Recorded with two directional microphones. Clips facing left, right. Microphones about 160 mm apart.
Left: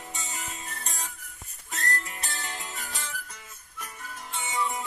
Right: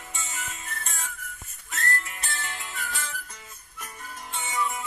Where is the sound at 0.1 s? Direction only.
35° left (ahead or behind).